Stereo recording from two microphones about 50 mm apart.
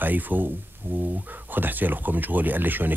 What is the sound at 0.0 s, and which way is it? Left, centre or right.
A man's voice, right.